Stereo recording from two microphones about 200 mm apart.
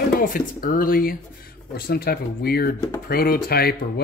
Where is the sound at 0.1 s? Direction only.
45° left (ahead or behind).